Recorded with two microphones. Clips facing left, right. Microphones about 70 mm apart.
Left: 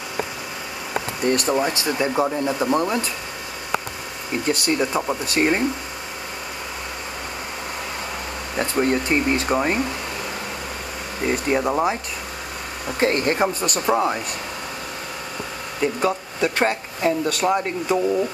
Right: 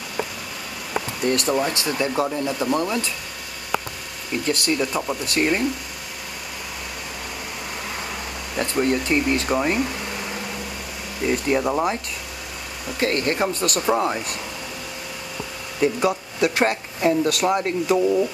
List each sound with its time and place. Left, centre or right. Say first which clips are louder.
1.7 s speech: left 1 dB; left
4.3 s speech: left 1 dB; left
8.5 s speech: left 1 dB; centre
9.5 s speech: left 1 dB; centre
11.2 s speech: even; centre
12.8 s speech: left 2 dB; left
13.6 s speech: even; centre
15.8 s speech: right 1 dB; centre